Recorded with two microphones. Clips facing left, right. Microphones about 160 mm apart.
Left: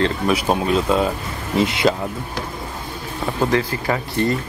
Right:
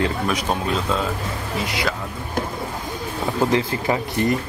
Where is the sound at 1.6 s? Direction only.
25° left (ahead or behind).